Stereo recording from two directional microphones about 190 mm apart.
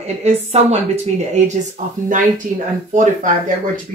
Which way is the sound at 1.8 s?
40° right (ahead or behind).